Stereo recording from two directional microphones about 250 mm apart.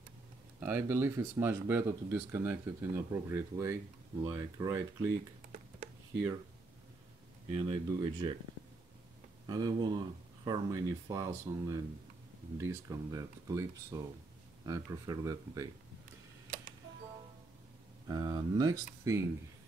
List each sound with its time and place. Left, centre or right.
0.6 s speech: centre
7.5 s speech: centre
9.5 s speech: centre
18.0 s speech: centre